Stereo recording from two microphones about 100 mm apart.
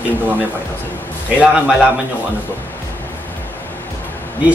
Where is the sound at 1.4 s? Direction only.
10° right (ahead or behind).